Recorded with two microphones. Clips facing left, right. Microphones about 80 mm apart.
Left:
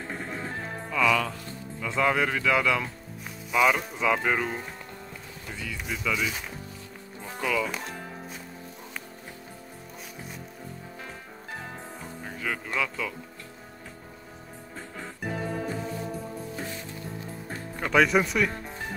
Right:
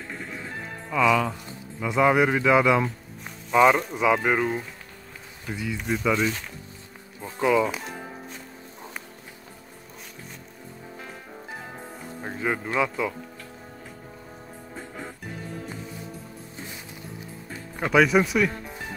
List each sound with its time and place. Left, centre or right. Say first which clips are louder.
0.1 s music: left 1 dB; left
0.8 s music: right 3 dB; centre
1.8 s a man's voice: right 5 dB; centre
3.9 s a man's voice: right 3 dB; centre
7.3 s speech: right 7 dB; right
7.7 s music: right 1 dB; centre
12.2 s speech: right 6 dB; right
14.8 s music: right 2 dB; centre
17.7 s speech: right 3 dB; centre
18.6 s music: even; centre